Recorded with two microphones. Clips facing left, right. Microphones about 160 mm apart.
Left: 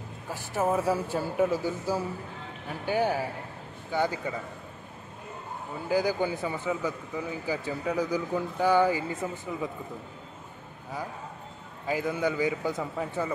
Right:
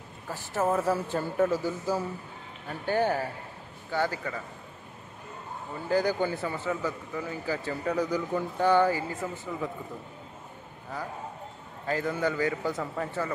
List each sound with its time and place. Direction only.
0.3 s speech: 15° left (ahead or behind)
2.7 s speech: 10° left (ahead or behind)
5.9 s speech: 10° left (ahead or behind)
11.8 s speech: 10° left (ahead or behind)